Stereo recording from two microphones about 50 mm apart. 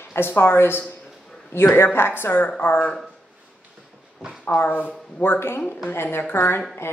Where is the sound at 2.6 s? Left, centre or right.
Left.